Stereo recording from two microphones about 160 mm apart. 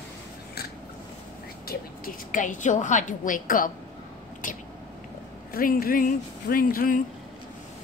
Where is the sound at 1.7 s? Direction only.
60° left (ahead or behind).